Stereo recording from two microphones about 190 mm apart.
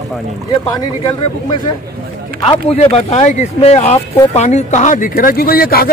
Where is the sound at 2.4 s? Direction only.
30° left (ahead or behind).